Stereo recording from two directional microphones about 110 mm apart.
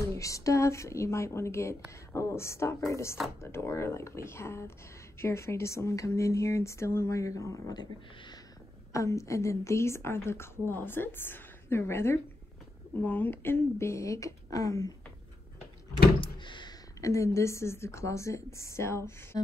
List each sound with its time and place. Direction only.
0.1 s speech: 30° left (ahead or behind)
8.9 s speech: 30° left (ahead or behind)
16.2 s door: 45° left (ahead or behind)
17.0 s speech: 25° left (ahead or behind)